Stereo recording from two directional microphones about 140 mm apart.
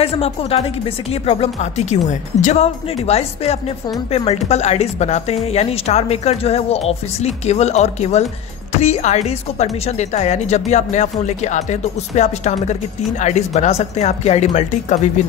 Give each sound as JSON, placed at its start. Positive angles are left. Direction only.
{"t": 0.0, "sound": "speech", "side_deg": 45}